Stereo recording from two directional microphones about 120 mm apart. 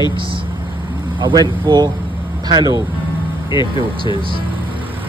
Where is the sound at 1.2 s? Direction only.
40° right (ahead or behind).